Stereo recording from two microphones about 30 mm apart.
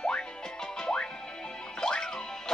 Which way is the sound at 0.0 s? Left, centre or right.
Left.